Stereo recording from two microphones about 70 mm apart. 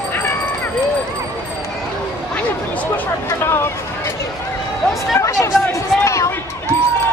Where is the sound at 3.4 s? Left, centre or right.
Left.